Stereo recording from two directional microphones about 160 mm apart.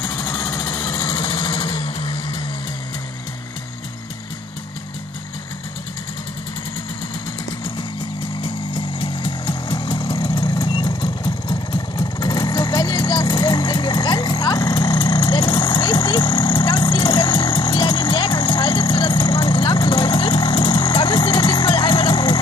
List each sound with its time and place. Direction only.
0.0 s vehicle: 25° left (ahead or behind)
8.4 s music: 30° left (ahead or behind)